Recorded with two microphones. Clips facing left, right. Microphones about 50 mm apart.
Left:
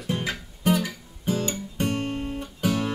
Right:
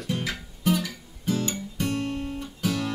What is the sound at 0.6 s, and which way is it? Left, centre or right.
Guitar, left.